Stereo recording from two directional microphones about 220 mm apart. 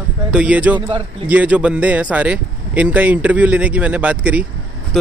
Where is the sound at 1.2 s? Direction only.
5° right (ahead or behind).